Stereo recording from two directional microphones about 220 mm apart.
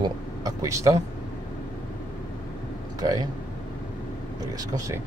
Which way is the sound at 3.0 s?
15° right (ahead or behind).